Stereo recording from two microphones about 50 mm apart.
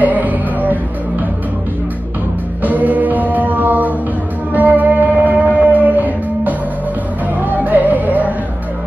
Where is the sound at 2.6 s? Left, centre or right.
Right.